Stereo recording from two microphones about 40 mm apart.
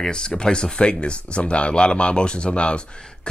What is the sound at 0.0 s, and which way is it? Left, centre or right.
Speech, left.